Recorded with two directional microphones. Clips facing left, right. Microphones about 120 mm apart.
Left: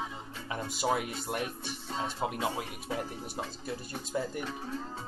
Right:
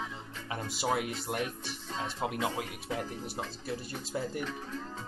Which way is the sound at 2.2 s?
40° left (ahead or behind).